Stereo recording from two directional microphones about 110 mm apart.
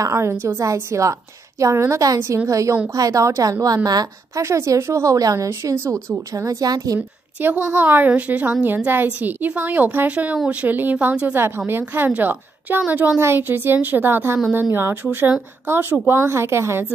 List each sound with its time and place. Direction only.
0.0 s a woman's voice: 25° right (ahead or behind)
7.4 s a woman's voice: 15° right (ahead or behind)